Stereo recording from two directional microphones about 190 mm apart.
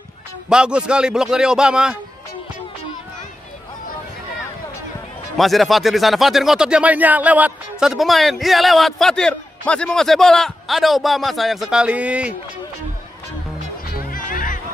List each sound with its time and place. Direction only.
0.5 s speech: 5° right (ahead or behind)
5.4 s speech: centre (ahead or behind)
13.9 s music: 45° left (ahead or behind)